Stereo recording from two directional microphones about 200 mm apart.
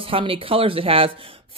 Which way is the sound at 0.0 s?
25° right (ahead or behind).